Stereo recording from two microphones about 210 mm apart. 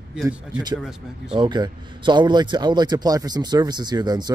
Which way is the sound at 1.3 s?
20° right (ahead or behind).